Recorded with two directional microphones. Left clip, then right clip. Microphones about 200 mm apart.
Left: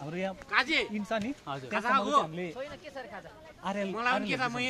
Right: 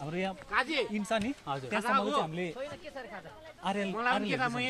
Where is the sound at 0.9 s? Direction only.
50° right (ahead or behind).